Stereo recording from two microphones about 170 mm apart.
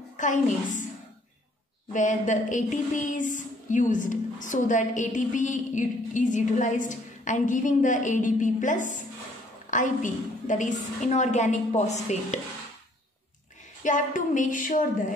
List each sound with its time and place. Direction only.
0.2 s a woman's voice: 50° left (ahead or behind)
1.9 s a woman's voice: 50° left (ahead or behind)
13.8 s a woman's voice: 50° left (ahead or behind)